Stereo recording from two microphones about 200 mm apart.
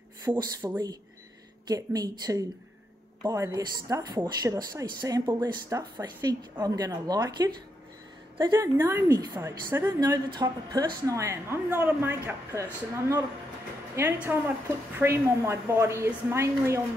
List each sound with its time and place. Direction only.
0.4 s a woman's voice: 20° right (ahead or behind)